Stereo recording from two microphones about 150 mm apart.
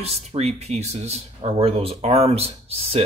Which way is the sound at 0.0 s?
45° right (ahead or behind).